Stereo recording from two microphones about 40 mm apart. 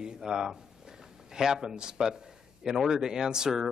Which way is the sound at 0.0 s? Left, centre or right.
Centre.